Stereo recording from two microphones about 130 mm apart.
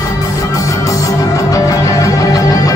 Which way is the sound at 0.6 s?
25° left (ahead or behind).